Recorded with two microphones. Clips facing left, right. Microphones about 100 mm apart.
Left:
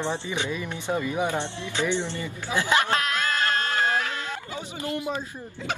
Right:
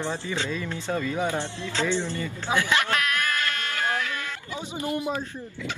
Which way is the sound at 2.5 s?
25° left (ahead or behind).